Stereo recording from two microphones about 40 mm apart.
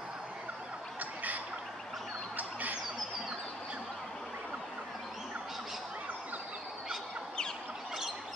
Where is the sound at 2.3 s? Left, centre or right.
Right.